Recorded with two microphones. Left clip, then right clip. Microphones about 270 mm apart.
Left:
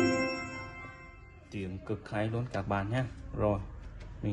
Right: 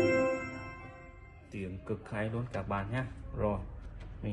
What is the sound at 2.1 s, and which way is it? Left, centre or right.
Speech, left.